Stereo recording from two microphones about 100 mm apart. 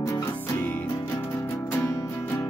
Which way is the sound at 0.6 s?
20° left (ahead or behind).